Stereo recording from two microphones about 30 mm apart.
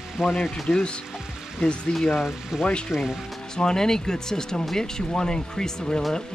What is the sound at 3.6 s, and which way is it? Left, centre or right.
Speech, left.